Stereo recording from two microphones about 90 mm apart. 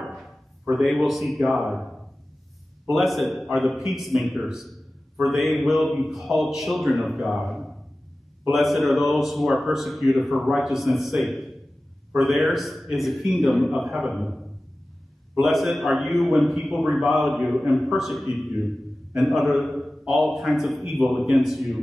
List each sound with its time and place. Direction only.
0.0 s a man's voice: centre (ahead or behind)
15.4 s a man's voice: centre (ahead or behind)